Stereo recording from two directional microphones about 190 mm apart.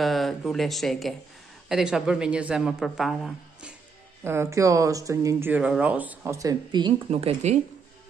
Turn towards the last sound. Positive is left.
turn(degrees=-35)  # may be behind; listen again after turning